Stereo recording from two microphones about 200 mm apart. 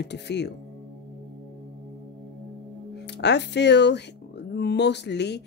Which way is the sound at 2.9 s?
60° left (ahead or behind).